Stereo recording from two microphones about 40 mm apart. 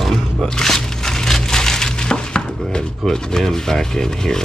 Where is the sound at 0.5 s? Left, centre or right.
Centre.